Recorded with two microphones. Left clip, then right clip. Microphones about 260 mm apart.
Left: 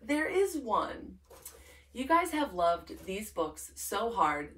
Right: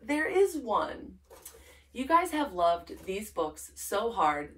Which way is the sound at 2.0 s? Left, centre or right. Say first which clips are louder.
Right 2 dB; centre.